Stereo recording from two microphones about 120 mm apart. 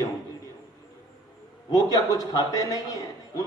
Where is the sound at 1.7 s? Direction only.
30° left (ahead or behind).